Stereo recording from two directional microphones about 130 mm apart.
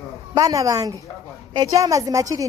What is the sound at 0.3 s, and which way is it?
A woman's voice, 25° right (ahead or behind).